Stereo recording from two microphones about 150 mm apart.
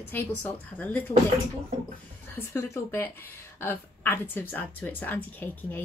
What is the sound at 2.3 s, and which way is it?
A woman's voice, 15° left (ahead or behind).